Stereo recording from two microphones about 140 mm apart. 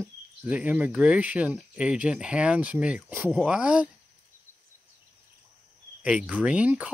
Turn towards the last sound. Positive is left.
turn(degrees=-10)  # may be behind; listen again after turning